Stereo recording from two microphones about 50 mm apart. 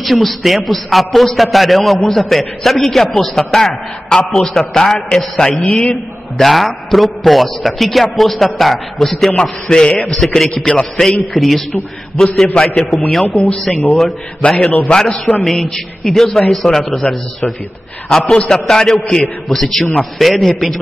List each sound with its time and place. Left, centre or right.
0.0 s a man's voice: centre
10.1 s a man's voice: centre
10.5 s a man's voice: centre
11.3 s a man's voice: centre
12.6 s a man's voice: left
12.9 s a man's voice: centre
14.4 s a man's voice: left
14.9 s a man's voice: centre